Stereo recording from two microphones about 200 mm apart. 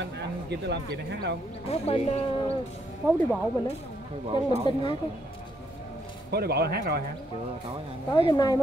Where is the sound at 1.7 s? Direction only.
30° left (ahead or behind).